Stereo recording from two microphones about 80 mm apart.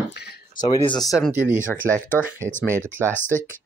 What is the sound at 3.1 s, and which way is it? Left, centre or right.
Speech, left.